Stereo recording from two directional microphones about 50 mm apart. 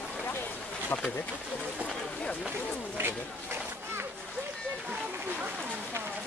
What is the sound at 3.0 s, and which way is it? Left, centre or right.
Speech, right.